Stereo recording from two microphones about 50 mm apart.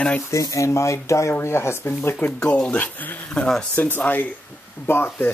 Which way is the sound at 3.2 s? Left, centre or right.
Left.